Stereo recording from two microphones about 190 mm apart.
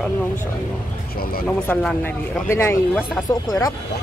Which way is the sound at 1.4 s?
5° left (ahead or behind).